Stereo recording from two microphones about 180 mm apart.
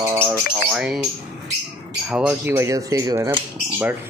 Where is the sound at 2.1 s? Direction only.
5° right (ahead or behind).